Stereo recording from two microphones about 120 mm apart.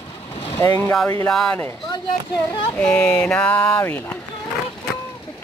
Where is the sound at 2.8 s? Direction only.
10° left (ahead or behind).